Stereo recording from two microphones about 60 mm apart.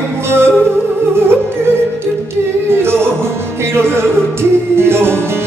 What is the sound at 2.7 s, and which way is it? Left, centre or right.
Music, right.